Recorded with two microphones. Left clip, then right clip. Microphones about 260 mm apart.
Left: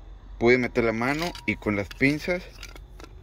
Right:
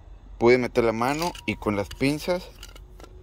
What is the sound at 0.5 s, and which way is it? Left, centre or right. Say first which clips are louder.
Speech: even; centre.